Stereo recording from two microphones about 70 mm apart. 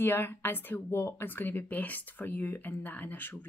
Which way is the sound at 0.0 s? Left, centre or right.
Left.